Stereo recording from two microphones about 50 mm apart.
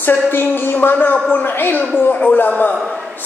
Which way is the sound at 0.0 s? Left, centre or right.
Left.